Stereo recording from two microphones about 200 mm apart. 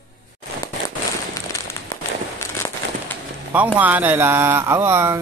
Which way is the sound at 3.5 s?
10° right (ahead or behind).